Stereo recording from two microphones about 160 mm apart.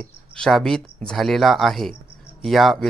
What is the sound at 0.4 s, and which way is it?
Speech, centre (ahead or behind).